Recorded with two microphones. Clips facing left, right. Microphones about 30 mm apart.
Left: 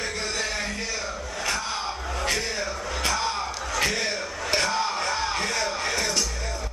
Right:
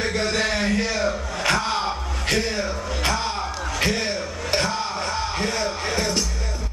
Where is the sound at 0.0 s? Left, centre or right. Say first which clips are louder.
Right 6 dB; right.